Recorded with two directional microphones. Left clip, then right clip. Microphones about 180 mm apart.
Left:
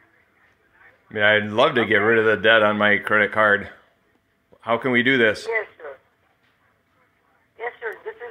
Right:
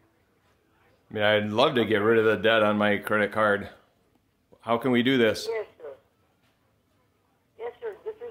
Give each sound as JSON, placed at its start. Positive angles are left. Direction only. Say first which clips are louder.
{"t": 1.1, "sound": "speech", "louder": "left 5 dB", "side_deg": -5}
{"t": 5.5, "sound": "a sound", "louder": "left 6 dB", "side_deg": 15}
{"t": 7.5, "sound": "radio", "louder": "left 6 dB", "side_deg": 15}